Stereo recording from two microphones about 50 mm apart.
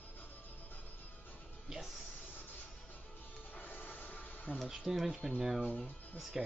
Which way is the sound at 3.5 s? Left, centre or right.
Left.